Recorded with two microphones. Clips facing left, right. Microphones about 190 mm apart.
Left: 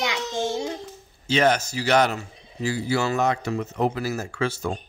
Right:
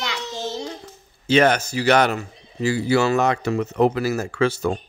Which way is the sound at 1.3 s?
60° right (ahead or behind).